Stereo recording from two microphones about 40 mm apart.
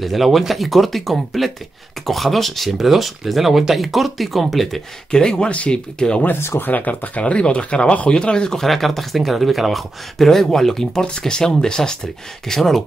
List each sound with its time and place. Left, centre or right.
0.0 s speech: centre
5.1 s speech: left
6.6 s speech: left
7.2 s speech: left
8.5 s speech: centre
11.1 s speech: centre